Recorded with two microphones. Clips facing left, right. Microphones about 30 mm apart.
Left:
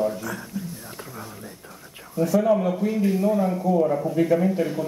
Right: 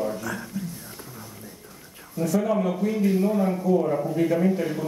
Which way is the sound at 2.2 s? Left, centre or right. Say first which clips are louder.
Left 3 dB; centre.